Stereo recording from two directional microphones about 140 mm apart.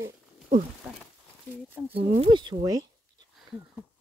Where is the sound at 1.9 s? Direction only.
40° right (ahead or behind).